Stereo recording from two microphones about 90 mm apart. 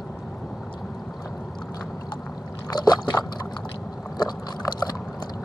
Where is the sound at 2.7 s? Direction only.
50° left (ahead or behind).